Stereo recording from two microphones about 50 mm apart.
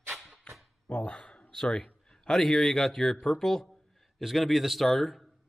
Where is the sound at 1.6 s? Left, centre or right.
Centre.